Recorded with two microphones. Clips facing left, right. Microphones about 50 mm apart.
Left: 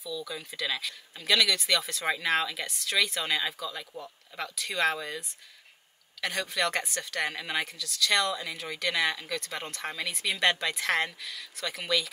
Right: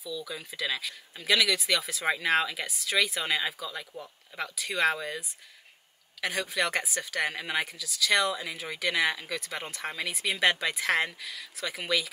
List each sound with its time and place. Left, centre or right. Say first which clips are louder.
0.0 s speech: even; centre
6.2 s speech: even; centre